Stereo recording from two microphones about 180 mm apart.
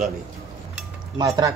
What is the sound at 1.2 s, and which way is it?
Speech, 20° right (ahead or behind).